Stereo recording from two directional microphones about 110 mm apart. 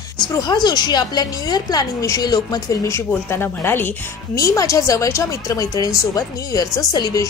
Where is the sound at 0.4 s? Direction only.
40° left (ahead or behind).